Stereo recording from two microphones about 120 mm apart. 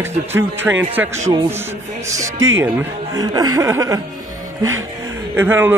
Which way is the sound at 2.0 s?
80° right.